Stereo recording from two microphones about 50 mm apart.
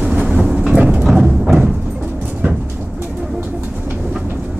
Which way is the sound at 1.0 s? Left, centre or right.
Centre.